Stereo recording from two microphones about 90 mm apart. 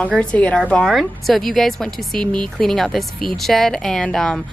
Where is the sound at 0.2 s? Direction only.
10° left (ahead or behind).